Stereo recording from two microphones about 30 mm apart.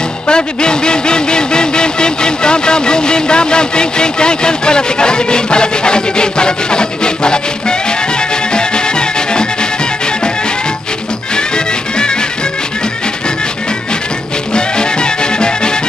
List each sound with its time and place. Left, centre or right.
0.3 s music: left
11.3 s music: left
14.5 s music: left